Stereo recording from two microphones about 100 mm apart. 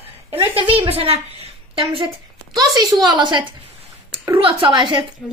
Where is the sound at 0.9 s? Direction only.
90° right; by 2.1 s 60° right (ahead or behind).